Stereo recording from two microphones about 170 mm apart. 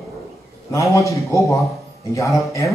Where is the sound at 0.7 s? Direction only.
20° left (ahead or behind).